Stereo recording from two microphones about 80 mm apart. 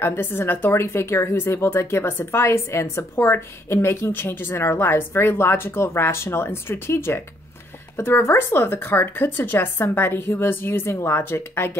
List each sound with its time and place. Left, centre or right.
0.0 s speech: left